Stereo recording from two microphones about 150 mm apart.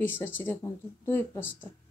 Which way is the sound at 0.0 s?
15° left (ahead or behind).